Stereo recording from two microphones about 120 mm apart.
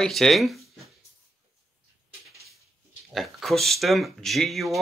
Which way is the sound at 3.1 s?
Centre (ahead or behind).